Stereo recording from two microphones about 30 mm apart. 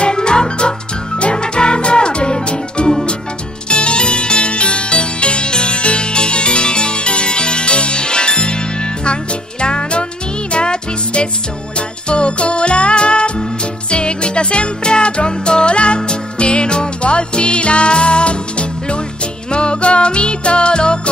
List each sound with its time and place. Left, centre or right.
0.0 s music: left